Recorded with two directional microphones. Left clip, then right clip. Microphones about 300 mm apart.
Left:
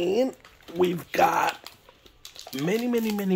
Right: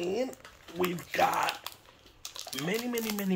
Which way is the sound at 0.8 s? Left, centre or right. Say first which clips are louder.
Left 6 dB; left.